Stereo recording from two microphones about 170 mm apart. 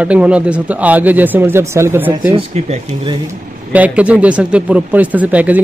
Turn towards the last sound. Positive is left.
turn(degrees=-10)  # may be behind; listen again after turning